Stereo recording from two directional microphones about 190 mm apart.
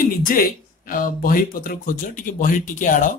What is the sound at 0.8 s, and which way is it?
Speech, 50° left (ahead or behind).